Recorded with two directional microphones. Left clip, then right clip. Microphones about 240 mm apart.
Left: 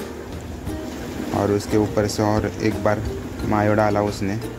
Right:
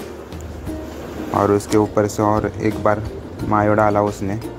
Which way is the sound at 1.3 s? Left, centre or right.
Centre.